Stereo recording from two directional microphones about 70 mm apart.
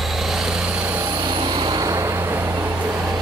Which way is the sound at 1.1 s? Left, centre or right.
Right.